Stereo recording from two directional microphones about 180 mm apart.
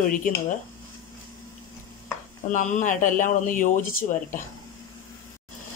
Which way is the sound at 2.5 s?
45° left (ahead or behind).